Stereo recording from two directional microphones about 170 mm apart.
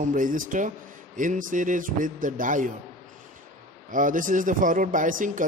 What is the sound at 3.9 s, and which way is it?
Speech, 50° right (ahead or behind).